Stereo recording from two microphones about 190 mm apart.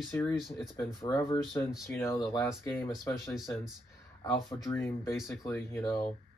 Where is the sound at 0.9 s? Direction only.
20° left (ahead or behind).